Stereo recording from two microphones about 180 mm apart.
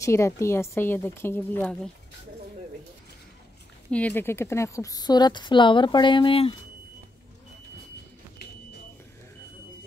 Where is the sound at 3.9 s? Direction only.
10° left (ahead or behind); by 6.5 s 30° left (ahead or behind).